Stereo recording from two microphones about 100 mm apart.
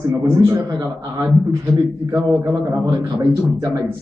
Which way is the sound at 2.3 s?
40° right (ahead or behind).